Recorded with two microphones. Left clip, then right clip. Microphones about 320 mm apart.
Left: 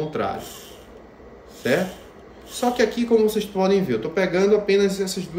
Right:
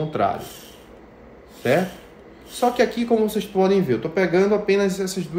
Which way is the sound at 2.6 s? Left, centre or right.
Centre.